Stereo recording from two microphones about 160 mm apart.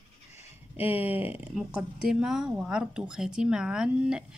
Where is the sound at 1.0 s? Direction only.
10° right (ahead or behind).